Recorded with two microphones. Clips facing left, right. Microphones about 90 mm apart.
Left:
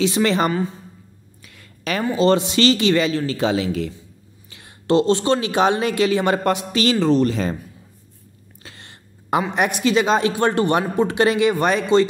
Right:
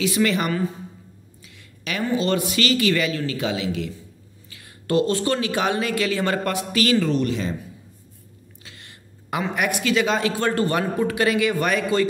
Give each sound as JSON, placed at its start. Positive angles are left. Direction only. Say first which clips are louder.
{"t": 0.0, "sound": "speech", "louder": "left 3 dB", "side_deg": 30}
{"t": 1.4, "sound": "a sound", "louder": "left 6 dB", "side_deg": 50}
{"t": 2.1, "sound": "speech", "louder": "left 6 dB", "side_deg": 30}
{"t": 4.5, "sound": "speech", "louder": "left 5 dB", "side_deg": 25}
{"t": 8.6, "sound": "a sound", "louder": "left 4 dB", "side_deg": 30}
{"t": 9.4, "sound": "speech", "louder": "left 3 dB", "side_deg": 20}